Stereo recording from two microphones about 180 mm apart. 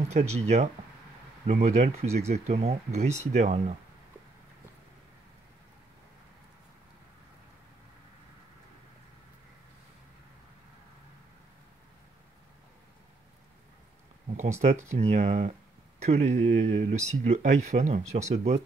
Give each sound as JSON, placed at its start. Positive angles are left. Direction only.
{"t": 0.1, "sound": "speech", "side_deg": -35}
{"t": 14.6, "sound": "speech", "side_deg": -40}